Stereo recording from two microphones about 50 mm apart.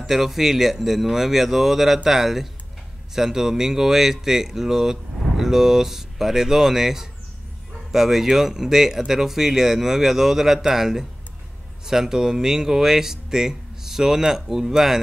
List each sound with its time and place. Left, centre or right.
0.0 s speech: centre